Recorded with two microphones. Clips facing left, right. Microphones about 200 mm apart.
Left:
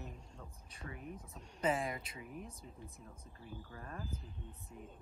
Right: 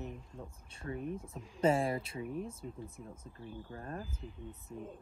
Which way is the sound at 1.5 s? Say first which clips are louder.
Right 6 dB; 30° right (ahead or behind).